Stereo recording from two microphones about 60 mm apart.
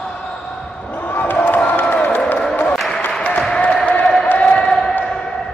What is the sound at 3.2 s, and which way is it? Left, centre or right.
Applause, centre.